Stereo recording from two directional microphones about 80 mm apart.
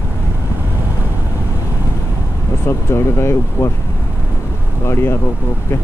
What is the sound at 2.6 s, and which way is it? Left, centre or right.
Speech, left.